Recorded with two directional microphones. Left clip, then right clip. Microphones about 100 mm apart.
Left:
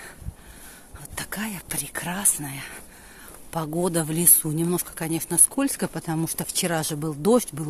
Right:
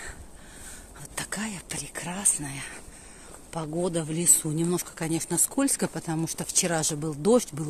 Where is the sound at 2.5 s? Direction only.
25° left (ahead or behind).